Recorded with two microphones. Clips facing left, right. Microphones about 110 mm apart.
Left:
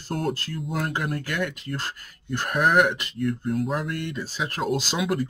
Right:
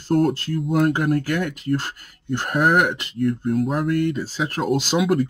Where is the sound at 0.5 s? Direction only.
50° right (ahead or behind).